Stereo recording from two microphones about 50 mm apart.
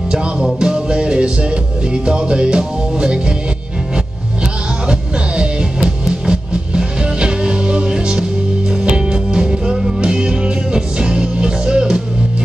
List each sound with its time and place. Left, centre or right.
0.1 s music: centre
4.8 s music: right